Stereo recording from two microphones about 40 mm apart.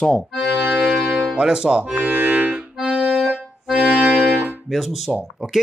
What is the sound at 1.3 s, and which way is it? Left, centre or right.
Speech, right.